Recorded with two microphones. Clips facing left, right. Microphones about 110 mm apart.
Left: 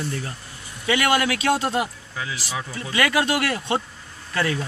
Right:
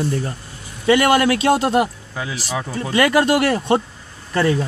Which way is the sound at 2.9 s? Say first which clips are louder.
Right 6 dB; 35° right (ahead or behind).